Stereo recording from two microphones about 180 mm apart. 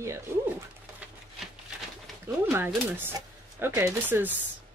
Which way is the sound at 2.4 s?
10° right (ahead or behind).